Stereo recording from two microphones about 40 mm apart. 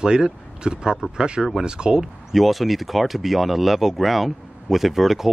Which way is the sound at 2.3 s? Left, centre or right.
Centre.